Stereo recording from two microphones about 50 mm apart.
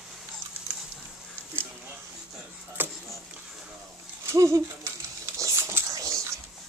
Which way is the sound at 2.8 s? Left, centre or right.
Right.